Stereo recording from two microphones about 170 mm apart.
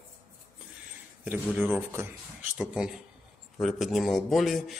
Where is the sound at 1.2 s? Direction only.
10° right (ahead or behind).